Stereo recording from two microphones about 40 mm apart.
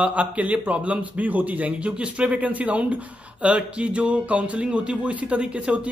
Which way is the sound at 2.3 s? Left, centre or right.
Right.